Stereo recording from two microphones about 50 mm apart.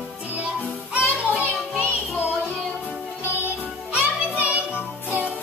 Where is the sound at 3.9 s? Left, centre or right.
Right.